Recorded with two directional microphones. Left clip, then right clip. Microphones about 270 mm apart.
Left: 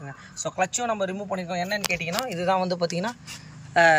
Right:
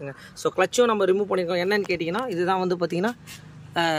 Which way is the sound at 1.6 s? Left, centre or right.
Centre.